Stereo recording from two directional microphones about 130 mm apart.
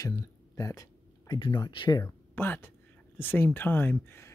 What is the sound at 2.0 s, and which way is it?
Speech, 15° left (ahead or behind).